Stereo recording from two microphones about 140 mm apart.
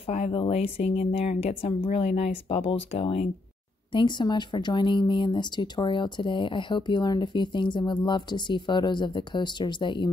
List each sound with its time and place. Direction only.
0.0 s speech: 50° left (ahead or behind)
3.9 s speech: 30° left (ahead or behind)